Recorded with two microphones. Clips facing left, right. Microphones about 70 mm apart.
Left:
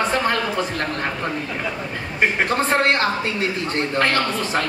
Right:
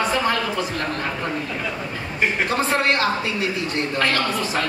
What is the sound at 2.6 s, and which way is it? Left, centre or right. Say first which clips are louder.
A woman's voice: left 1 dB; left.